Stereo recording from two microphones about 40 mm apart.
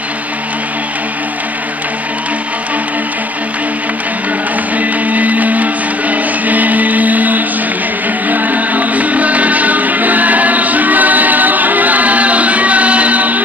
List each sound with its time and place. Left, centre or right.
4.7 s music: right